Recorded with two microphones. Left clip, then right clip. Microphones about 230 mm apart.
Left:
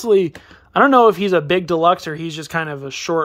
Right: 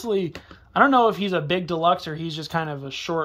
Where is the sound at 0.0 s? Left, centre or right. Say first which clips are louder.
Left 10 dB; centre.